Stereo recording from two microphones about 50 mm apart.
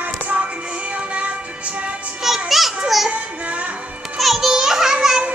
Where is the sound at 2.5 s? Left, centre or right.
Centre.